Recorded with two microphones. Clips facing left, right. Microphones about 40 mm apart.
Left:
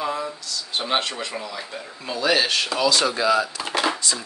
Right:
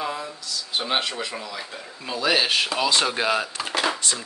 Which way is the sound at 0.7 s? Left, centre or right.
Centre.